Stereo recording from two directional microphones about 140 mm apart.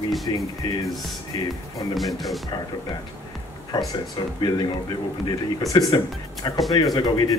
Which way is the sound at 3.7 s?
30° left (ahead or behind).